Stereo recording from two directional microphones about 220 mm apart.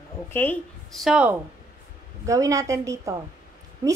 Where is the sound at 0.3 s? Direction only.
10° left (ahead or behind).